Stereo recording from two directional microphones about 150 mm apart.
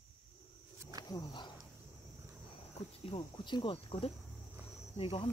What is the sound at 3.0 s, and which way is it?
Cricket, 35° left (ahead or behind).